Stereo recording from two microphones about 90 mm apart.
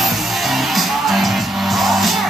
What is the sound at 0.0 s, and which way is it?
Music, centre (ahead or behind).